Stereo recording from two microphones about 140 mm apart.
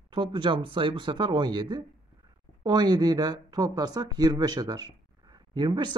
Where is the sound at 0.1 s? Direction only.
35° right (ahead or behind).